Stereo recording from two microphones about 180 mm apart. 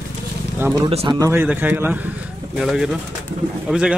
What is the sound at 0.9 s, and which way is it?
Speech, 35° right (ahead or behind).